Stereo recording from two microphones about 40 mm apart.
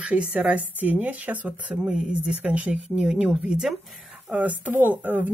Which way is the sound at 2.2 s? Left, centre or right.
Right.